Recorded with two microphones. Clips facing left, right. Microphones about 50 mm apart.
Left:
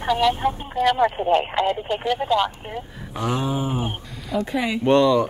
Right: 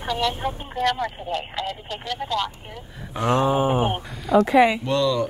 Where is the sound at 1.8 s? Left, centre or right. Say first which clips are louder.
Left 7 dB; centre.